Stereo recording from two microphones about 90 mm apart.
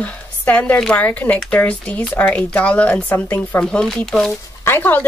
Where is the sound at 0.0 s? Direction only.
15° left (ahead or behind).